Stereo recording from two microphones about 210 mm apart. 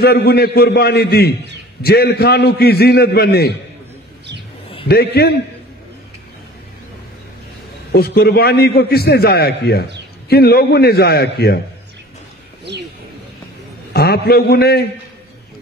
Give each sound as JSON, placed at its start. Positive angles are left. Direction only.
{"t": 0.0, "sound": "a man's voice", "side_deg": 50}
{"t": 4.8, "sound": "a man's voice", "side_deg": 50}
{"t": 7.9, "sound": "a man's voice", "side_deg": 50}
{"t": 13.9, "sound": "a man's voice", "side_deg": 50}